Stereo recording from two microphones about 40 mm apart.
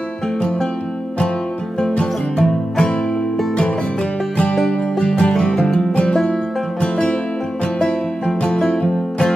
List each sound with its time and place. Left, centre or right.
2.0 s music: centre
4.9 s music: left
5.3 s music: centre
8.4 s music: centre